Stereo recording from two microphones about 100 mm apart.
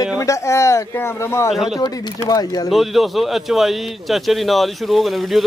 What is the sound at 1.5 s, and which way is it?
Speech, centre (ahead or behind).